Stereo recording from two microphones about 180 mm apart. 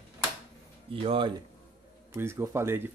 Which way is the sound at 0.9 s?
30° right (ahead or behind).